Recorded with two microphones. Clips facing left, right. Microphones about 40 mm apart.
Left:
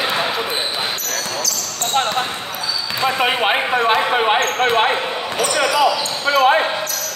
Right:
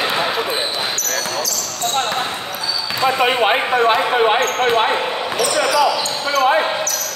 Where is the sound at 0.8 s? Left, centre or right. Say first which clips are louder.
Right 1 dB; centre.